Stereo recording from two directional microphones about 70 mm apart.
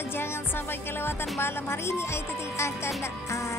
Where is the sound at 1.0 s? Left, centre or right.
Left.